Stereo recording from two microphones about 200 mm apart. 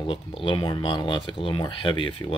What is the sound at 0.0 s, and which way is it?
Speech, 25° left (ahead or behind).